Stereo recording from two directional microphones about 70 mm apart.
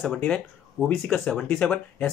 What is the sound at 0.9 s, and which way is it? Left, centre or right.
Speech, centre.